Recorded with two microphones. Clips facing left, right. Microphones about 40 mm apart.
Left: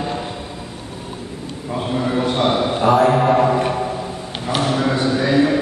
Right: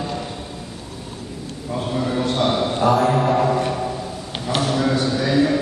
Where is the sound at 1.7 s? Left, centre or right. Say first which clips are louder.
Left 2 dB; centre.